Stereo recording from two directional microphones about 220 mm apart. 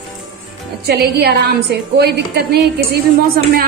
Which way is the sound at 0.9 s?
45° right (ahead or behind).